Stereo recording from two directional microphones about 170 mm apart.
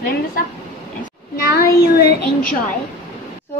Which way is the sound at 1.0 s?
60° left (ahead or behind).